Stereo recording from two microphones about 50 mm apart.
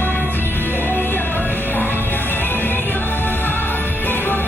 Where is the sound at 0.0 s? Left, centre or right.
Left.